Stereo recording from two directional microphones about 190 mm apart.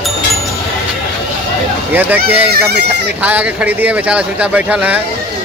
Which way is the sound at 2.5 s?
60° right (ahead or behind).